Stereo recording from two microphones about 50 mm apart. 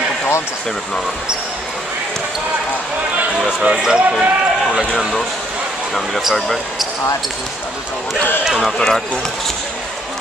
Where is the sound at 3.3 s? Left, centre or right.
Right.